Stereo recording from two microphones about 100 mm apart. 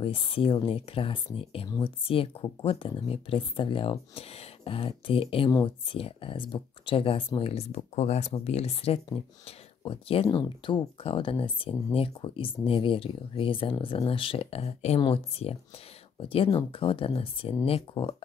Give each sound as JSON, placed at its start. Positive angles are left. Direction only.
{"t": 0.0, "sound": "speech", "side_deg": 65}
{"t": 7.3, "sound": "speech", "side_deg": 80}
{"t": 9.8, "sound": "speech", "side_deg": 70}
{"t": 15.0, "sound": "speech", "side_deg": 70}